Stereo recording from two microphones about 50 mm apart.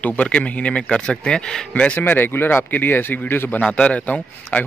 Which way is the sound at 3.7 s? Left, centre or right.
Left.